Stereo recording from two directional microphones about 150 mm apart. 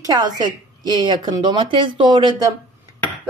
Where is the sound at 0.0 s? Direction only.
25° right (ahead or behind).